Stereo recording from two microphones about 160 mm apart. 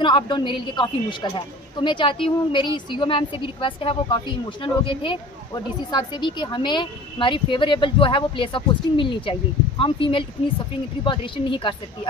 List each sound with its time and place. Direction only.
0.0 s a woman's voice: 30° left (ahead or behind)